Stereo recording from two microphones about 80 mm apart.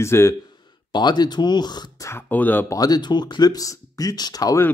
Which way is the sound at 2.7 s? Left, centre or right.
Left.